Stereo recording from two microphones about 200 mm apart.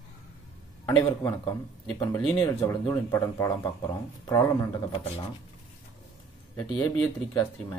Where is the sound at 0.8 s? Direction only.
15° left (ahead or behind).